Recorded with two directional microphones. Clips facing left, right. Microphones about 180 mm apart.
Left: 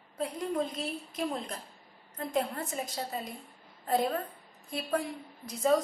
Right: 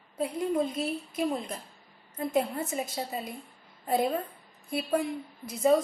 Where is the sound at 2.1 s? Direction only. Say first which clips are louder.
Right 4 dB; 10° right (ahead or behind).